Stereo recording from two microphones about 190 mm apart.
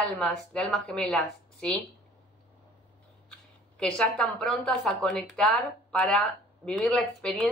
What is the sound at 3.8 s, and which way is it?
A woman's voice, 5° left (ahead or behind).